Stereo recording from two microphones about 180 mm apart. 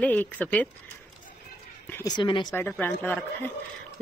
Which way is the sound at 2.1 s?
25° left (ahead or behind).